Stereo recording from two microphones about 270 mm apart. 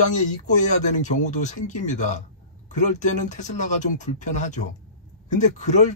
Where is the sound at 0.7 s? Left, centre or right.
Left.